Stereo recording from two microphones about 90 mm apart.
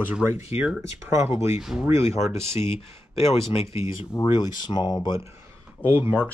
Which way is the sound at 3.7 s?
35° right (ahead or behind).